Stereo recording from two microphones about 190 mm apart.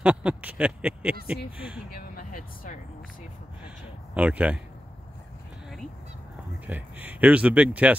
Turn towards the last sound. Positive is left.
turn(degrees=-5)  # may be behind; listen again after turning